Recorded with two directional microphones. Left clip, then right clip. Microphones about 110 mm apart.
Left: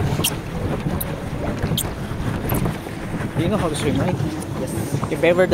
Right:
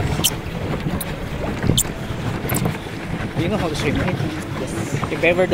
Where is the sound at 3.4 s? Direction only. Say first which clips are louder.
Left 1 dB; 15° left (ahead or behind).